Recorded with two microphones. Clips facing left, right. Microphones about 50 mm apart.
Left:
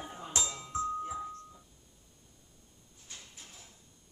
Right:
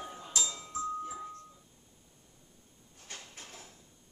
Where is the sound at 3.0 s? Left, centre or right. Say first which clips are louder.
Right 4 dB; right.